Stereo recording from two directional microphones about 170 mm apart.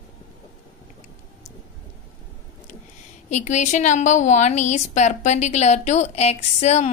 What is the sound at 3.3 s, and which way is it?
A woman's voice, 45° left (ahead or behind).